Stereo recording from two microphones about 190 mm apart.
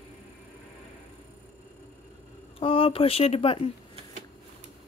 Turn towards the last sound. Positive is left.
turn(degrees=30)  # may be behind; listen again after turning